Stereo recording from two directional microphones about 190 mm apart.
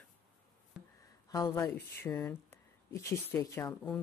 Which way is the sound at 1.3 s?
20° left (ahead or behind).